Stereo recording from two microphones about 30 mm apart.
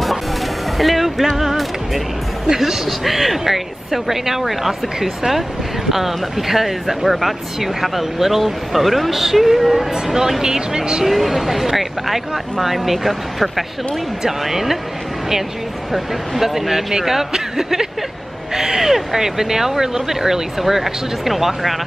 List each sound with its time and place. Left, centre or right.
0.7 s speech: centre
11.1 s speech: centre
15.9 s speech: centre